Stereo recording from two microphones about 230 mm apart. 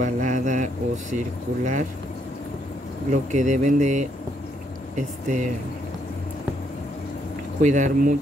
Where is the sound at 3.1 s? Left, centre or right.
Right.